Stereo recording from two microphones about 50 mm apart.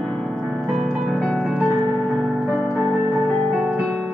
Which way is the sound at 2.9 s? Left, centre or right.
Centre.